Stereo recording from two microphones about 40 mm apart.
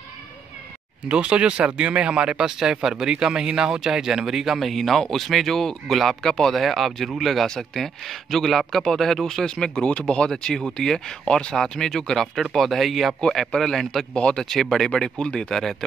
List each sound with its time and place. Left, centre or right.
1.0 s speech: right; by 6.6 s centre
6.6 s speech: centre
14.1 s speech: left
14.4 s speech: centre
15.5 s speech: centre